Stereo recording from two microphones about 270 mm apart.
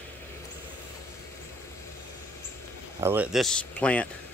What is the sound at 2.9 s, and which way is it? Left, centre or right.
Speech, centre.